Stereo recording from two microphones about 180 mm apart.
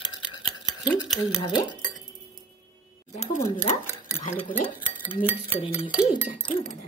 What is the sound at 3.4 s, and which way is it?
Speech, 15° left (ahead or behind).